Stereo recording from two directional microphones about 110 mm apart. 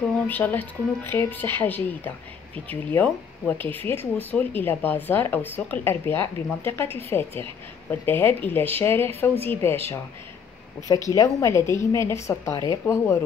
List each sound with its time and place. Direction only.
0.3 s speech: 15° left (ahead or behind)